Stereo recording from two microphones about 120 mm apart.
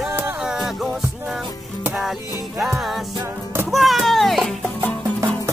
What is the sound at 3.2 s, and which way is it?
Music, 20° right (ahead or behind).